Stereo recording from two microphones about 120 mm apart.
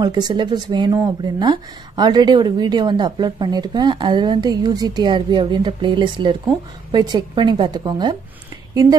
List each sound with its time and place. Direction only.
0.0 s speech: 35° right (ahead or behind)